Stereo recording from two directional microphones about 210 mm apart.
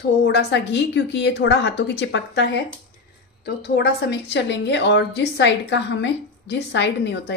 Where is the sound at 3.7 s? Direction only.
55° left (ahead or behind).